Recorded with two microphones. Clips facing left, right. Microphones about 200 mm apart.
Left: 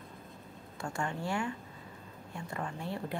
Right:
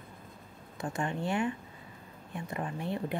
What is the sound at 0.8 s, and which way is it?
A woman's voice, 20° right (ahead or behind).